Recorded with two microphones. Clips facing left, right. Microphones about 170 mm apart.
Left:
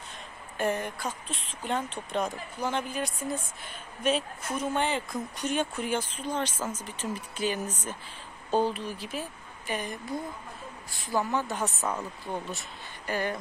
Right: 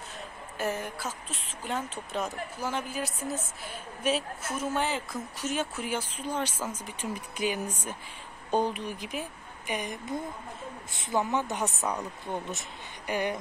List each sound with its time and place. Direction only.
0.6 s a woman's voice: 5° right (ahead or behind)
11.8 s a woman's voice: centre (ahead or behind)
12.3 s speech: 20° right (ahead or behind)